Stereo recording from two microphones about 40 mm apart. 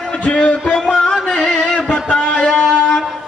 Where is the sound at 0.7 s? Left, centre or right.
Centre.